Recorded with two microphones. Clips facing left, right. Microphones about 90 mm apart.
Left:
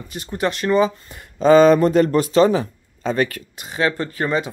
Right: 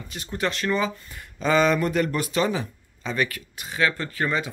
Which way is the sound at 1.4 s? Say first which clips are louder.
Left 9 dB; 40° left (ahead or behind).